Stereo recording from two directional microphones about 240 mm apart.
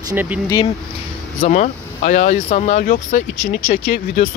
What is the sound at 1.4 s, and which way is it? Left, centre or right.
Speech, left.